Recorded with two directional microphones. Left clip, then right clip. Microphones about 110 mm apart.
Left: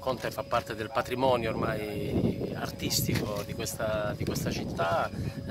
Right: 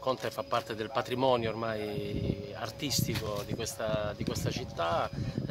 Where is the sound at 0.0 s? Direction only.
20° right (ahead or behind).